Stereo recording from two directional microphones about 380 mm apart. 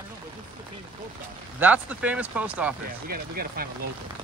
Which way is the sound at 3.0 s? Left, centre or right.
Right.